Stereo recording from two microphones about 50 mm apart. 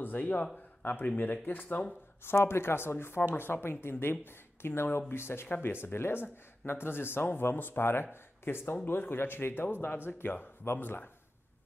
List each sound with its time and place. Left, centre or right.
0.0 s speech: left
2.3 s speech: left